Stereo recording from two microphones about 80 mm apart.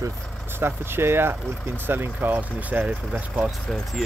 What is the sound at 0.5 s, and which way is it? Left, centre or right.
Speech, right.